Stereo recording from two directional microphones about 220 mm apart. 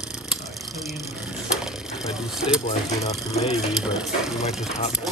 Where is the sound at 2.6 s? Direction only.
30° left (ahead or behind).